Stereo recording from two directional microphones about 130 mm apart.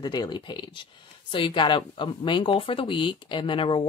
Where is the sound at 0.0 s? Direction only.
30° left (ahead or behind).